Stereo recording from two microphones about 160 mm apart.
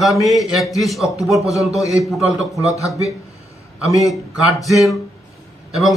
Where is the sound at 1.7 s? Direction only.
20° left (ahead or behind).